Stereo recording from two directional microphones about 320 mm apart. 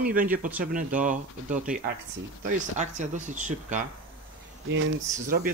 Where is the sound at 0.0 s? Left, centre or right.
Right.